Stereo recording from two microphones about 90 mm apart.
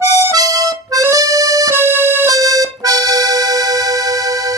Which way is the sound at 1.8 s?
25° right (ahead or behind).